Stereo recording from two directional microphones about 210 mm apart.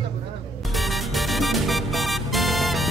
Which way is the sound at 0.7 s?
Centre (ahead or behind).